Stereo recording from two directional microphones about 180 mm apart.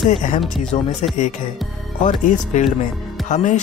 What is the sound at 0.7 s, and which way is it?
Speech, 35° left (ahead or behind).